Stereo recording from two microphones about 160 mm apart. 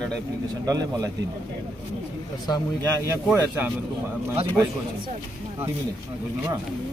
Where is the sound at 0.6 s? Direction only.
25° right (ahead or behind).